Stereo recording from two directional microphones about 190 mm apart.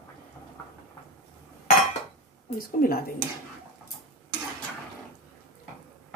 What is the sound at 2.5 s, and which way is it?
Speech, 50° left (ahead or behind).